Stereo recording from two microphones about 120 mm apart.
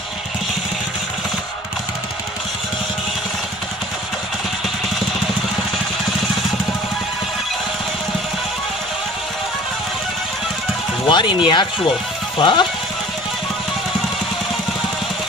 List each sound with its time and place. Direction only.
11.1 s speech: 40° left (ahead or behind)